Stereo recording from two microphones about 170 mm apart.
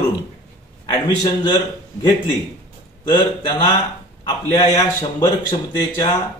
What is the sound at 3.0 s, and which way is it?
A man's voice, 25° left (ahead or behind).